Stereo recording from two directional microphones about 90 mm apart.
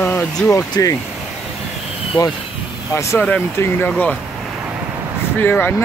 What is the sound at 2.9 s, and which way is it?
Speech, 30° left (ahead or behind).